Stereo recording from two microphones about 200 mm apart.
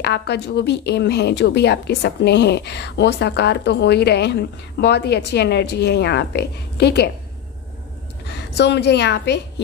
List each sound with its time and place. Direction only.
0.0 s a woman's voice: 55° left (ahead or behind)
8.3 s a woman's voice: 55° left (ahead or behind)